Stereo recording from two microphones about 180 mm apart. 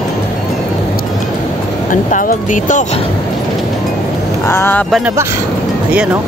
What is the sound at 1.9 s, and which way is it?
Speech, 50° left (ahead or behind).